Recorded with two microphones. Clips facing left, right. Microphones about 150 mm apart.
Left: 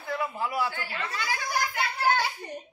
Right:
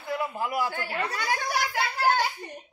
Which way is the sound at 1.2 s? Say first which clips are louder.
Even; 70° right (ahead or behind).